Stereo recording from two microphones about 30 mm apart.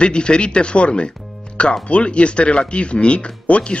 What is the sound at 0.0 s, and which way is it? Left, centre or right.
Speech, left.